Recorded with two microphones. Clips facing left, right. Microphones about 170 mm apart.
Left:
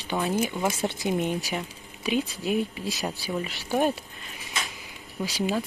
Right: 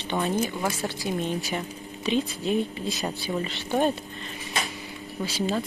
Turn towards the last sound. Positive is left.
turn(degrees=15)  # may be behind; listen again after turning